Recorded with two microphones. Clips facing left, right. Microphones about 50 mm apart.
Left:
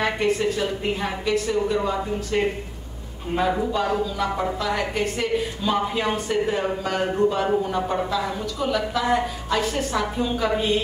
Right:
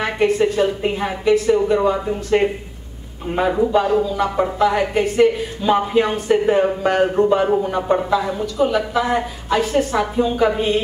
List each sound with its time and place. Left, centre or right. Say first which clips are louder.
0.0 s a woman's voice: right 4 dB; centre
0.4 s speech: right 7 dB; centre
3.8 s a woman's voice: right 6 dB; centre
5.2 s a woman's voice: right 8 dB; centre
9.1 s a woman's voice: right 3 dB; centre